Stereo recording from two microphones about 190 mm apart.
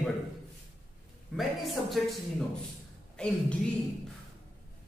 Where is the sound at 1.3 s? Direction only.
Centre (ahead or behind).